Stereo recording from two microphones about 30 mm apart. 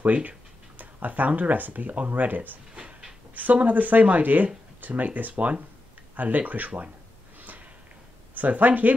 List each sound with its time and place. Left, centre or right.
0.0 s speech: right
0.7 s a sound: right
1.5 s speech: right
3.6 s speech: right
5.3 s speech: right
6.1 s speech: right
8.4 s speech: right